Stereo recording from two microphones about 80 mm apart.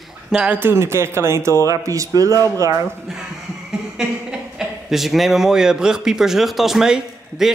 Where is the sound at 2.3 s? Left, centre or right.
Left.